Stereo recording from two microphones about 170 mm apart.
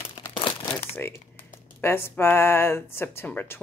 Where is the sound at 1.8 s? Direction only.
15° left (ahead or behind).